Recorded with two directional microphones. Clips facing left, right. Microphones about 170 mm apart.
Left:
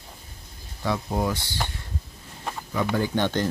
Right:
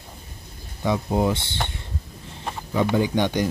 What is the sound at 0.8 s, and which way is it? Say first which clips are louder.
Speech: right 4 dB; 20° right (ahead or behind).